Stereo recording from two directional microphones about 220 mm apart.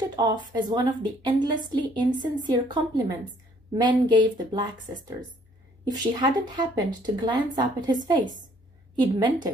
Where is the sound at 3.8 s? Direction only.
20° right (ahead or behind).